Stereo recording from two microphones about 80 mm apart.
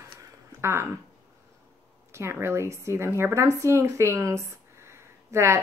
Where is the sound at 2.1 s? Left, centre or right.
Right.